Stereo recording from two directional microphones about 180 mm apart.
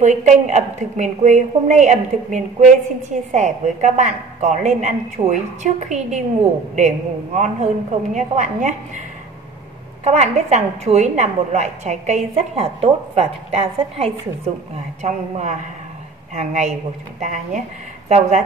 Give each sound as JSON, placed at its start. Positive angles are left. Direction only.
{"t": 0.0, "sound": "a woman's voice", "side_deg": -40}
{"t": 7.3, "sound": "a woman's voice", "side_deg": -40}
{"t": 10.0, "sound": "a woman's voice", "side_deg": -40}